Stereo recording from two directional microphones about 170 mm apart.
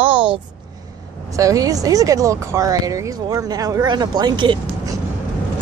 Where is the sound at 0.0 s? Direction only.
30° right (ahead or behind).